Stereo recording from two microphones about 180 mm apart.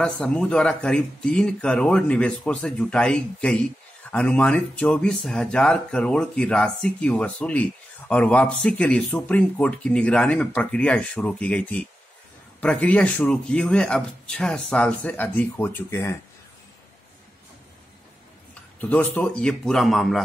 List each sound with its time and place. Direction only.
0.0 s speech: 5° left (ahead or behind)
18.5 s a man's voice: 10° left (ahead or behind)